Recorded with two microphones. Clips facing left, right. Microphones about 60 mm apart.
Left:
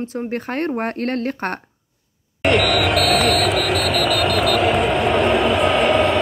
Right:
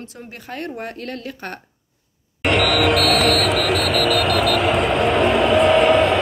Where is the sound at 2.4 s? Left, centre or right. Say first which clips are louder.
Left 1 dB; centre.